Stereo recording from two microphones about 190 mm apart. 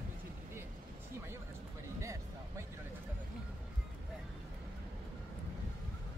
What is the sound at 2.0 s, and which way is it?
Music, 15° right (ahead or behind).